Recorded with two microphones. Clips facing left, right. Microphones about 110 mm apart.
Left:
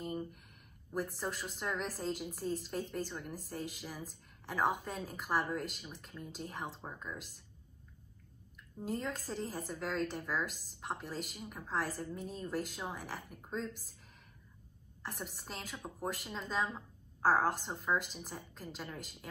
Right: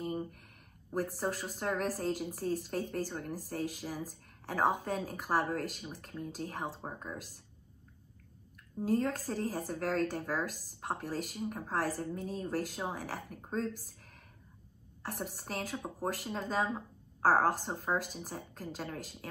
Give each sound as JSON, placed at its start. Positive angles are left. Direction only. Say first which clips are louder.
{"t": 1.1, "sound": "a woman's voice", "louder": "right 4 dB", "side_deg": -50}
{"t": 8.8, "sound": "a woman's voice", "louder": "right 7 dB", "side_deg": -50}
{"t": 15.0, "sound": "a woman's voice", "louder": "right 5 dB", "side_deg": -50}